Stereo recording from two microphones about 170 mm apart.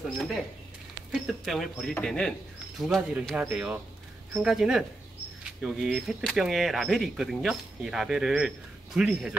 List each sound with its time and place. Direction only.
0.2 s speech: centre (ahead or behind)